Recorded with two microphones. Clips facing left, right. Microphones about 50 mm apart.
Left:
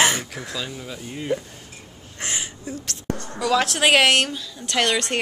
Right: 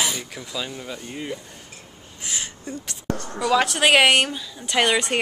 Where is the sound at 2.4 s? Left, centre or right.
Centre.